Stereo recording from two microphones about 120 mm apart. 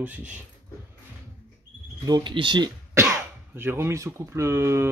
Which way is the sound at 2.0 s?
35° right (ahead or behind).